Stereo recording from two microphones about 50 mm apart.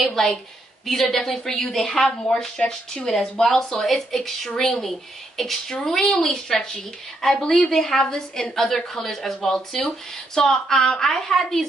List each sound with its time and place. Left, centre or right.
0.0 s a woman's voice: centre